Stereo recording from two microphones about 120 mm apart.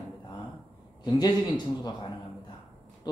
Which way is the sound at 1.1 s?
40° left (ahead or behind).